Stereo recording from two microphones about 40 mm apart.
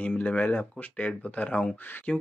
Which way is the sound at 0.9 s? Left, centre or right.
Left.